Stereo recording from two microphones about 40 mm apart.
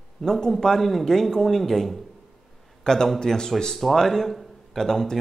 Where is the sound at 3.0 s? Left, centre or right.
Centre.